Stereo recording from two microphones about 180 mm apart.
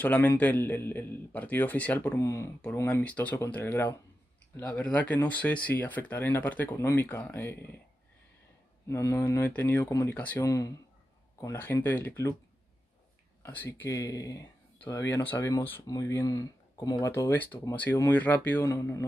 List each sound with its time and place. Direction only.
0.0 s speech: 10° left (ahead or behind)
8.8 s speech: 15° left (ahead or behind)
13.4 s speech: 10° left (ahead or behind)